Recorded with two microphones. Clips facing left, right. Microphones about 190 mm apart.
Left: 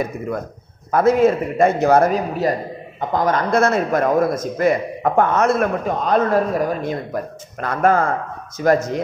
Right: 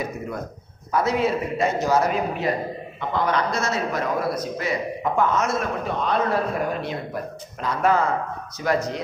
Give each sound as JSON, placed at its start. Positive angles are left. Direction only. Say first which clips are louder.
{"t": 0.9, "sound": "a man's voice", "louder": "left 7 dB", "side_deg": 50}
{"t": 2.1, "sound": "a man's voice", "louder": "left 4 dB", "side_deg": 40}
{"t": 6.0, "sound": "a man's voice", "louder": "left 6 dB", "side_deg": 40}